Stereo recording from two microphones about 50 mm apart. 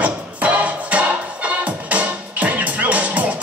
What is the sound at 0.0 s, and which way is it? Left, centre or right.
Music, right.